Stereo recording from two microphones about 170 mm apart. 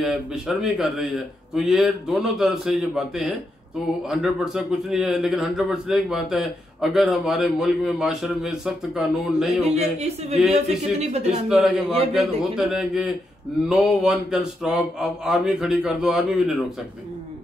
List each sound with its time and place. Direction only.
0.0 s a man's voice: centre (ahead or behind)
9.8 s speech: 40° right (ahead or behind)
10.3 s a man's voice: centre (ahead or behind)
11.0 s speech: 40° right (ahead or behind)
11.4 s a man's voice: 5° right (ahead or behind)